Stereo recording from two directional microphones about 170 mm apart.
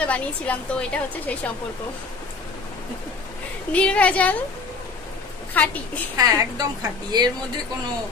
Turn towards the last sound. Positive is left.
turn(degrees=-25)  # may be behind; listen again after turning